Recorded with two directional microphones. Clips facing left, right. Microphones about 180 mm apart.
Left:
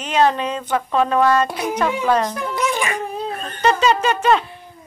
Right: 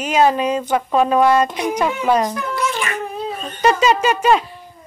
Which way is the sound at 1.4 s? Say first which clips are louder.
Right 2 dB; 5° left (ahead or behind).